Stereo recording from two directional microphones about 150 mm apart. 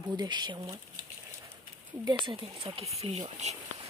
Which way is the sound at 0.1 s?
30° right (ahead or behind).